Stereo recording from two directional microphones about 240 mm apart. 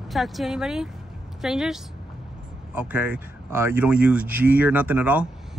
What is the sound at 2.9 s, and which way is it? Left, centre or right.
Speech, centre.